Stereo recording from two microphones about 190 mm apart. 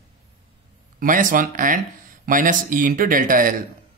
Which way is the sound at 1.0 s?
45° right (ahead or behind).